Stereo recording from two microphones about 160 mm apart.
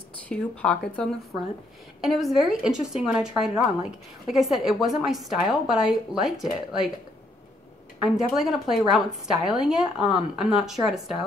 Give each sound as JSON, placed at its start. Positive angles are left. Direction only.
{"t": 0.3, "sound": "a woman's voice", "side_deg": 5}
{"t": 2.0, "sound": "a woman's voice", "side_deg": 0}
{"t": 8.0, "sound": "a woman's voice", "side_deg": 0}